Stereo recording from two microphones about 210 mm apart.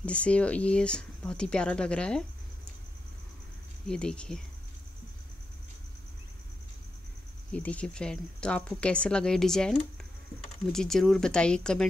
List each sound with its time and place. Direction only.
0.0 s a woman's voice: 5° left (ahead or behind)
3.8 s a woman's voice: 5° left (ahead or behind)
7.5 s a woman's voice: 5° left (ahead or behind)